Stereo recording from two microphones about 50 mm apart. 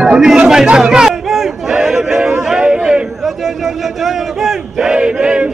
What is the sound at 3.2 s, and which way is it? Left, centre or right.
Crowd, centre.